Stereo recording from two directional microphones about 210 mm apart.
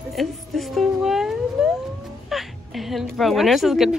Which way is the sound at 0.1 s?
Centre (ahead or behind).